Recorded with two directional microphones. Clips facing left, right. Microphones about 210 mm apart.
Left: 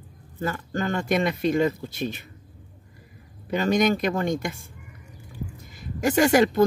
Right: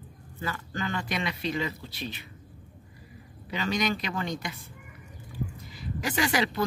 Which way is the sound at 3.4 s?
50° left (ahead or behind).